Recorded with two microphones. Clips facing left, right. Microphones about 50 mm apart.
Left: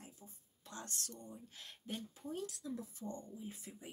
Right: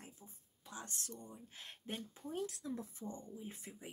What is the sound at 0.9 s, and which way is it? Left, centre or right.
Speech, right.